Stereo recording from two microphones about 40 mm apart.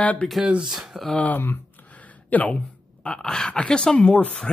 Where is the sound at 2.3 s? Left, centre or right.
Left.